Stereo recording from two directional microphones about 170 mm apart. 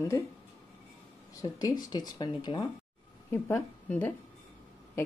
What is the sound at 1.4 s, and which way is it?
Speech, 25° left (ahead or behind).